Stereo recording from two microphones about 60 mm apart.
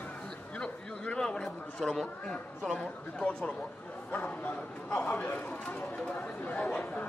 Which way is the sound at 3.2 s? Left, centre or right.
Centre.